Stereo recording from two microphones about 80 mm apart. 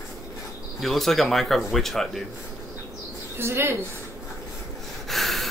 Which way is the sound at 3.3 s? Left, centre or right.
Right.